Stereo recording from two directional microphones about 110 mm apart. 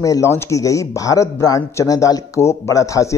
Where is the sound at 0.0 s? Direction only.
30° left (ahead or behind).